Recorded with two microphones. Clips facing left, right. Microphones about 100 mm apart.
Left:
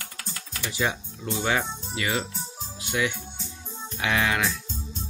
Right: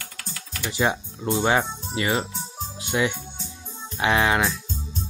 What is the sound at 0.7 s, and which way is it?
Speech, 30° right (ahead or behind).